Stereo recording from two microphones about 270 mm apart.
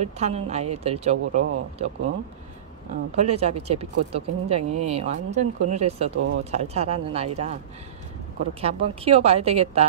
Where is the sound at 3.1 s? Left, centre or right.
Right.